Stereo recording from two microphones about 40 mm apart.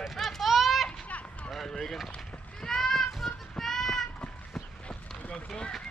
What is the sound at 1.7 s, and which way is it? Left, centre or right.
Vehicle, centre.